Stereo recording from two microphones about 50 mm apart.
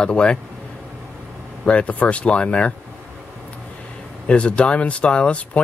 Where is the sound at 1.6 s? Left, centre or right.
Left.